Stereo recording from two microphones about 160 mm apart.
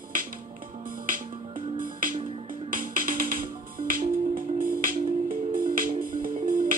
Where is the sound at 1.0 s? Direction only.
60° right (ahead or behind).